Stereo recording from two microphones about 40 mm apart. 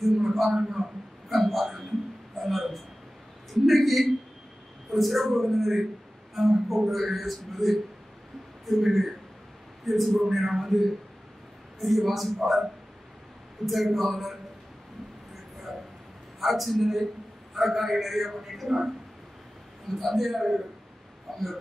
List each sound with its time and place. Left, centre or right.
0.0 s a man's voice: centre
0.6 s a man's voice: centre
1.3 s a sound: centre
3.5 s speech: centre
13.7 s speech: centre
16.3 s speech: centre
19.9 s speech: centre
21.3 s a sound: centre